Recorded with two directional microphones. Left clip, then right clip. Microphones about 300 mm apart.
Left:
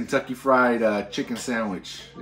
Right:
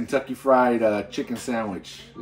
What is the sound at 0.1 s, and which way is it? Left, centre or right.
Speech, centre.